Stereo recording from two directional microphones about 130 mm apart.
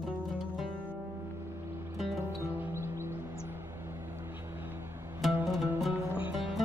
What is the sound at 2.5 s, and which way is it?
Music, 20° right (ahead or behind).